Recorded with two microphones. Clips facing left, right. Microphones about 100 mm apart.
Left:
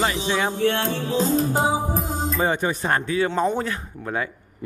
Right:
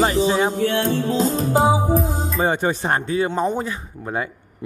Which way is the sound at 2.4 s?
25° right (ahead or behind).